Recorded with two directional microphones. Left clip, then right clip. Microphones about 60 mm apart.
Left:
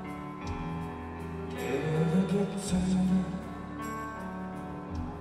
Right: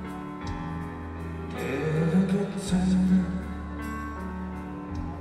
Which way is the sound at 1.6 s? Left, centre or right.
Right.